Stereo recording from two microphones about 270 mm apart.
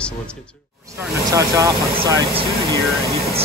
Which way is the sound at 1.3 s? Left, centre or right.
Centre.